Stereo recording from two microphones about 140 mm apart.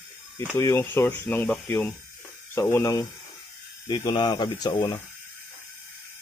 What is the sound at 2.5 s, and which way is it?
Speech, 20° left (ahead or behind).